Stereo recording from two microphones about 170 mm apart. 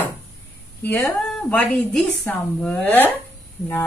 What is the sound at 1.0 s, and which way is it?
A woman's voice, centre (ahead or behind).